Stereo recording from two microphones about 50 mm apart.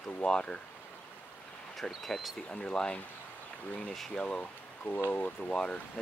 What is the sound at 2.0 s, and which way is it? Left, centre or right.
Speech, centre.